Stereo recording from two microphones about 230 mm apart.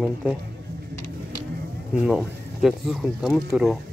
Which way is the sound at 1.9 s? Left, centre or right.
Centre.